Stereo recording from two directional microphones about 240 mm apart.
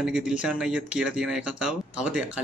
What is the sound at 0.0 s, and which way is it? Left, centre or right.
A man's voice, centre.